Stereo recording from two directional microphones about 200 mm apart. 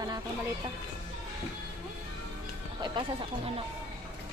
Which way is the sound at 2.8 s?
30° right (ahead or behind).